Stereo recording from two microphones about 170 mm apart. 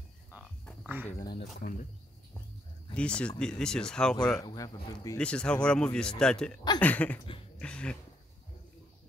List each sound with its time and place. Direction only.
1.3 s speech: 60° left (ahead or behind)
2.9 s a man's voice: 5° left (ahead or behind)
4.4 s speech: 20° left (ahead or behind)
5.1 s a man's voice: 5° left (ahead or behind)
6.8 s a sound: 10° left (ahead or behind)
7.5 s dog: 5° left (ahead or behind)